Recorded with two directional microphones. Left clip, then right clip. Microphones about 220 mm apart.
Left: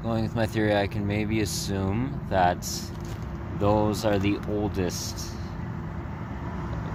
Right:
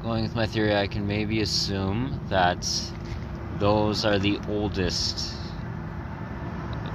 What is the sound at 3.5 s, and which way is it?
Speech, 5° left (ahead or behind).